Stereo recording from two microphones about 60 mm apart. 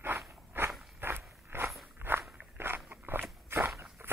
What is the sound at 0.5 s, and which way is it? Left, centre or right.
Walk, right.